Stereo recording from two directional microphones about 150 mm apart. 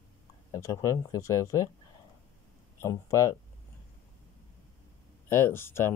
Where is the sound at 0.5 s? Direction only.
20° left (ahead or behind).